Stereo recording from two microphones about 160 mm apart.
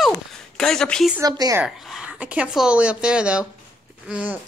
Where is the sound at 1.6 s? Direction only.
5° right (ahead or behind).